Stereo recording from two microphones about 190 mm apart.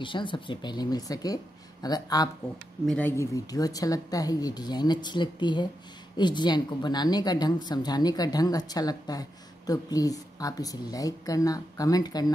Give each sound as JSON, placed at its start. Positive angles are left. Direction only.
{"t": 0.0, "sound": "a woman's voice", "side_deg": 25}